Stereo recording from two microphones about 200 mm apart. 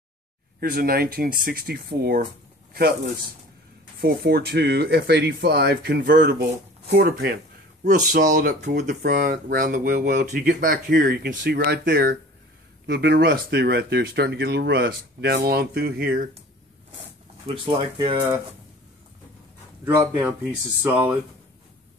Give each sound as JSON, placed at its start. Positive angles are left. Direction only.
{"t": 0.6, "sound": "speech", "side_deg": -45}
{"t": 4.0, "sound": "speech", "side_deg": -50}
{"t": 7.8, "sound": "speech", "side_deg": -40}
{"t": 11.2, "sound": "speech", "side_deg": -60}
{"t": 17.5, "sound": "speech", "side_deg": -25}
{"t": 19.8, "sound": "speech", "side_deg": -15}